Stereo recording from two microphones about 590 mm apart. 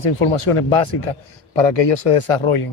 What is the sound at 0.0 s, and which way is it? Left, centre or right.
A man's voice, left.